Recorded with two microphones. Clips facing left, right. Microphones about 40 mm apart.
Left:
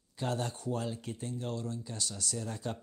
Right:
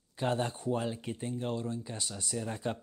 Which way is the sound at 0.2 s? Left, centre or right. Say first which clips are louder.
Right 3 dB; right.